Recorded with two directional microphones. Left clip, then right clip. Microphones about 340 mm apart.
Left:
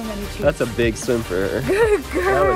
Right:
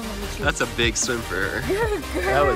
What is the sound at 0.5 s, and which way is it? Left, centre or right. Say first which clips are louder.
Speech: left 3 dB; centre.